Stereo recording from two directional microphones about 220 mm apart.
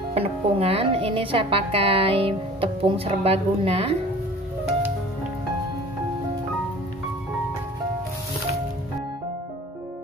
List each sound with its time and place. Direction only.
0.1 s speech: 30° right (ahead or behind)